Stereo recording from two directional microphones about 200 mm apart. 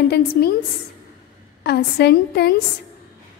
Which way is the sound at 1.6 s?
55° left (ahead or behind).